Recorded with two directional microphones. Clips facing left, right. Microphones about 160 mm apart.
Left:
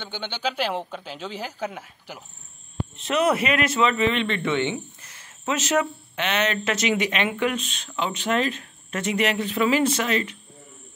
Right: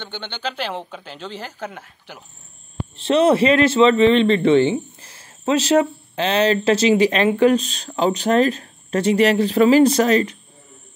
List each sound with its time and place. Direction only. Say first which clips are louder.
0.0 s speech: even; 5° left (ahead or behind)
3.0 s a man's voice: right 7 dB; 30° right (ahead or behind)